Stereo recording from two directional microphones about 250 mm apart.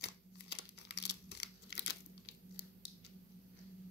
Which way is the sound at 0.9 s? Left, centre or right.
Left.